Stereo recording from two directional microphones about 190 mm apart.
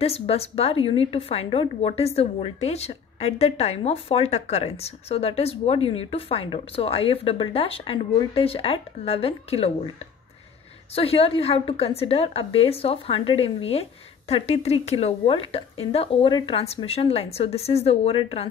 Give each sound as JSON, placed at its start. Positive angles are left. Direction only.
{"t": 0.0, "sound": "a woman's voice", "side_deg": 30}
{"t": 11.0, "sound": "a woman's voice", "side_deg": 30}